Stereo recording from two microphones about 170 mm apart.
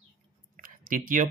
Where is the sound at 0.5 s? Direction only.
55° right (ahead or behind).